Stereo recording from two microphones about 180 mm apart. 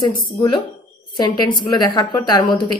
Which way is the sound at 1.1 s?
25° left (ahead or behind).